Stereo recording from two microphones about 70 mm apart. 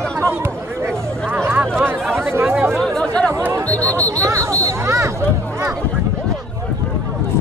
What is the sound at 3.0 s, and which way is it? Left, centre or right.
Chatter, centre.